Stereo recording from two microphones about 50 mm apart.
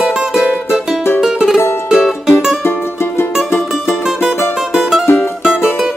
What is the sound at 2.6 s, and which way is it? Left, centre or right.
Music, left.